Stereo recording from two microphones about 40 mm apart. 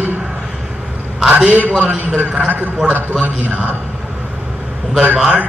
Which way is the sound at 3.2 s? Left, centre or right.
Right.